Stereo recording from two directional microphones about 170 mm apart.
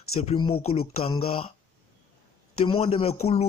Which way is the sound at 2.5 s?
35° left (ahead or behind).